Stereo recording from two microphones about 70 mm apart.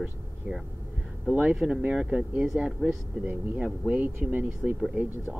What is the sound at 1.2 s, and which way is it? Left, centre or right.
Speech, right.